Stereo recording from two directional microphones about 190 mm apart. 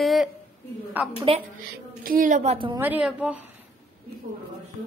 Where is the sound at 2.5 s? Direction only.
25° right (ahead or behind).